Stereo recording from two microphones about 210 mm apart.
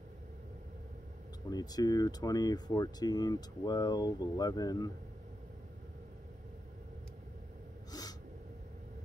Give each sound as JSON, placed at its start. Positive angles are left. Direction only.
{"t": 1.5, "sound": "speech", "side_deg": 20}
{"t": 7.9, "sound": "gasp", "side_deg": 20}